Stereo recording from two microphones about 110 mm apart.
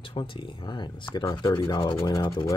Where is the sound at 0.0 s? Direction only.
50° left (ahead or behind).